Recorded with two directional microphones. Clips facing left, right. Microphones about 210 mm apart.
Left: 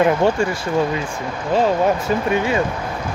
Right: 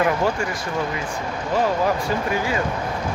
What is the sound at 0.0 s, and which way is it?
Speech, 25° left (ahead or behind).